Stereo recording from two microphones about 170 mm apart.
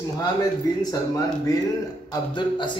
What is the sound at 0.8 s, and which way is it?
A man's voice, 20° left (ahead or behind).